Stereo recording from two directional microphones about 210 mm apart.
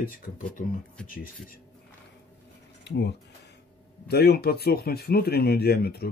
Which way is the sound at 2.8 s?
50° left (ahead or behind).